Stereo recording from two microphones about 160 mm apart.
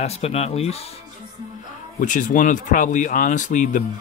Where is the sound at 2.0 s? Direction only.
55° left (ahead or behind).